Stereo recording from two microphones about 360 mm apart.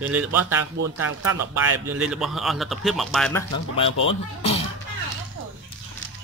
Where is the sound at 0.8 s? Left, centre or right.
Right.